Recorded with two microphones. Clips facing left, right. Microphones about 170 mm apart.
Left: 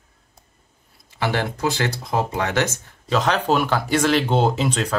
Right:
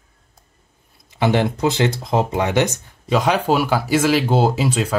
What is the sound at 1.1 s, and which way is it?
Speech, 20° right (ahead or behind).